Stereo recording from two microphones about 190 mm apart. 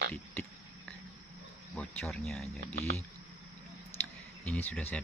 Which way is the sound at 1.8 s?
5° left (ahead or behind).